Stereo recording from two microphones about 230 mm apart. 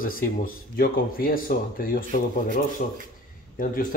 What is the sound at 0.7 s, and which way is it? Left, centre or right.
Speech, left.